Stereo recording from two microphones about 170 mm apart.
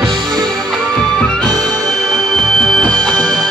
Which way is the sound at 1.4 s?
20° right (ahead or behind).